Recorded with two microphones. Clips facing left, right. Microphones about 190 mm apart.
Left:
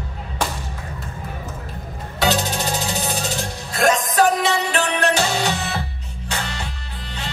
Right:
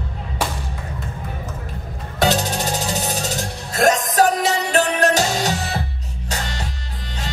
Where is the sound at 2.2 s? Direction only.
45° right (ahead or behind).